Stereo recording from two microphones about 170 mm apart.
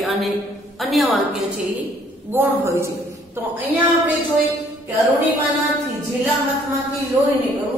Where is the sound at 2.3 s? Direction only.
15° right (ahead or behind).